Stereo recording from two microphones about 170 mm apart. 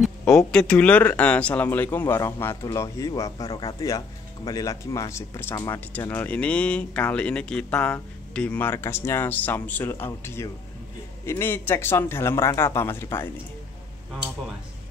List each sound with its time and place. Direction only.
0.0 s speech: centre (ahead or behind); by 3.7 s 30° left (ahead or behind)
4.5 s speech: 20° left (ahead or behind)